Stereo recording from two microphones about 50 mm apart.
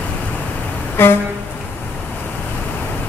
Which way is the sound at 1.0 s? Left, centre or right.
Left.